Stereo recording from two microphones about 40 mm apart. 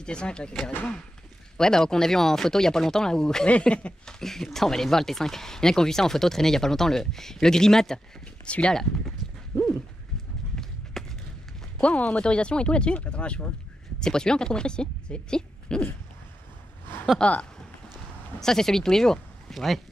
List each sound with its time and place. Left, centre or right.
0.0 s speech: left
0.5 s speech: centre
3.6 s speech: left
4.0 s speech: centre
8.5 s speech: left
10.5 s run: centre
11.8 s speech: left
13.9 s speech: centre
17.2 s speech: left
18.4 s speech: centre
19.5 s speech: centre